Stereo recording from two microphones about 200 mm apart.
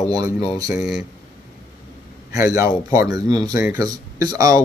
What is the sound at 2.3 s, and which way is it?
Speech, 15° right (ahead or behind).